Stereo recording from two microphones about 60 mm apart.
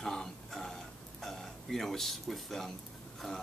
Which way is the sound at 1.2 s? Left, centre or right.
Centre.